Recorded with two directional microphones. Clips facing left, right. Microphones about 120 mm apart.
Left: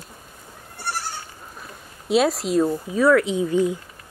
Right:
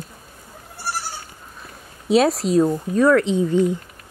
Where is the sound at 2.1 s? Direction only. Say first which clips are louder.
Right 3 dB; centre (ahead or behind).